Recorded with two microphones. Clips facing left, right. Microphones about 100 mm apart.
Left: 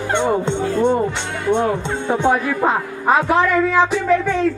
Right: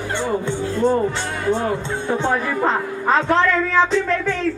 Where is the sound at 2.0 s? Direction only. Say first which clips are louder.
Left 4 dB; 15° left (ahead or behind).